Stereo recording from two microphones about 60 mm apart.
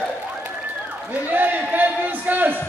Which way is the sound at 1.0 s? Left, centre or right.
Right.